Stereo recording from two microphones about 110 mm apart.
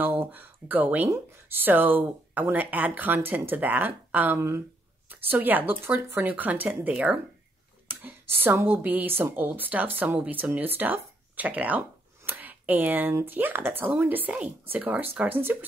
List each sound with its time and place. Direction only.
0.0 s speech: 15° right (ahead or behind)